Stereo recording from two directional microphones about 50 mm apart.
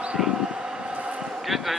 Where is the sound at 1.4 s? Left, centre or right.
Centre.